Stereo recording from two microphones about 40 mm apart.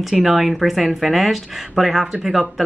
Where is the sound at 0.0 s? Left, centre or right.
Centre.